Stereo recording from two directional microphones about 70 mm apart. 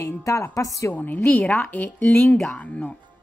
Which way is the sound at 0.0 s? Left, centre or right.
Left.